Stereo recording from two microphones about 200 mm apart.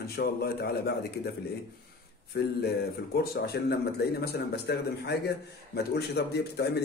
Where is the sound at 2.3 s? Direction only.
55° left (ahead or behind).